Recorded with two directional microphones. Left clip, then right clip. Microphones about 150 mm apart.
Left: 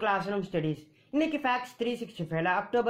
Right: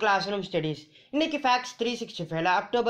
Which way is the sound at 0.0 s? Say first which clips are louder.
Right 4 dB; 40° right (ahead or behind).